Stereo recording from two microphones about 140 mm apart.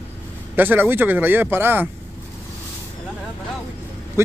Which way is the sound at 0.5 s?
15° right (ahead or behind).